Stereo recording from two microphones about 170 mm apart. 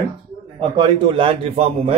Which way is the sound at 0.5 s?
30° right (ahead or behind).